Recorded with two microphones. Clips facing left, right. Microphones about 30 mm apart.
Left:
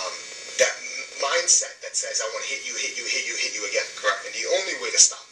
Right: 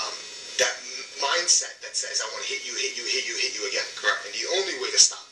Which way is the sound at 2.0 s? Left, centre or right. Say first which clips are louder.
Left 3 dB; right.